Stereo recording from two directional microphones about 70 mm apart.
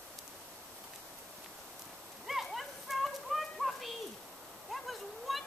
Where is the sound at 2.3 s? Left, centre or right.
Centre.